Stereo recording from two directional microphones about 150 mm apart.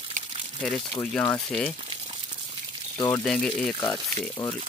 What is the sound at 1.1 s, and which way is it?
Speech, 10° left (ahead or behind).